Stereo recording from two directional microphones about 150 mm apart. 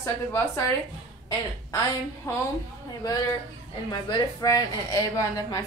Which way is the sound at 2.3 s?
15° left (ahead or behind).